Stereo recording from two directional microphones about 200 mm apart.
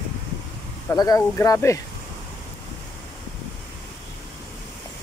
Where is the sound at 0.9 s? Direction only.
15° left (ahead or behind).